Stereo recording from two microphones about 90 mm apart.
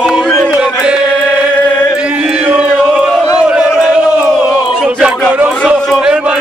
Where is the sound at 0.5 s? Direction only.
10° right (ahead or behind).